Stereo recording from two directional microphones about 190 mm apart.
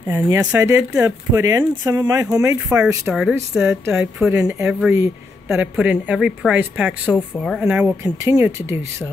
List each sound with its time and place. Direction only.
0.1 s speech: 20° right (ahead or behind)
7.2 s speech: 5° left (ahead or behind)
7.6 s speech: 10° right (ahead or behind)